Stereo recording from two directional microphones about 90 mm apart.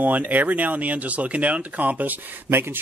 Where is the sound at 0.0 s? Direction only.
20° right (ahead or behind).